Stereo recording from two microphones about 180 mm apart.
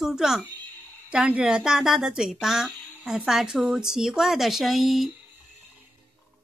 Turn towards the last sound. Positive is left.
turn(degrees=0)  # may be behind; listen again after turning